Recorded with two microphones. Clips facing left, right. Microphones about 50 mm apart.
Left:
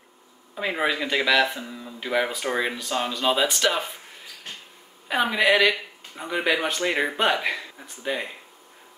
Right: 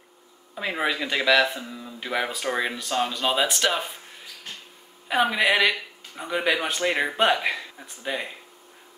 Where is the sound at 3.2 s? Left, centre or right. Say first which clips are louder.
Left 3 dB; centre.